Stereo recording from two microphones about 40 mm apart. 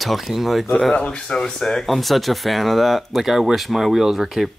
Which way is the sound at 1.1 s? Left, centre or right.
Centre.